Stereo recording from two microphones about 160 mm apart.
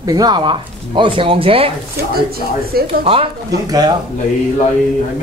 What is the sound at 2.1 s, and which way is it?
Speech, 70° right (ahead or behind).